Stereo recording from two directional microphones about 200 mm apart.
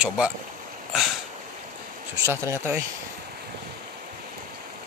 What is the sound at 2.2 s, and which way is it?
Speech, 15° right (ahead or behind).